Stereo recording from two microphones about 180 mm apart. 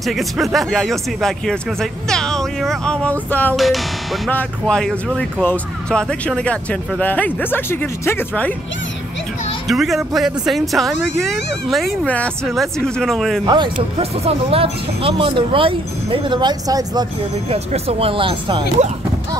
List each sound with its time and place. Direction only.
0.0 s speech: centre (ahead or behind)
9.7 s speech: centre (ahead or behind)
13.7 s speech: 35° right (ahead or behind)
17.5 s speech: 35° right (ahead or behind)